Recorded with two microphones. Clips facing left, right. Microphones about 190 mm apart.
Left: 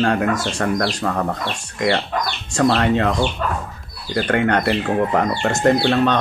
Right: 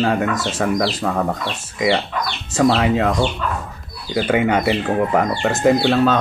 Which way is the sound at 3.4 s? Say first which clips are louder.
Left 1 dB; 45° left (ahead or behind).